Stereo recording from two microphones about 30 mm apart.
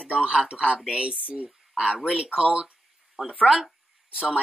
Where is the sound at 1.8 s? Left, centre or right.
Right.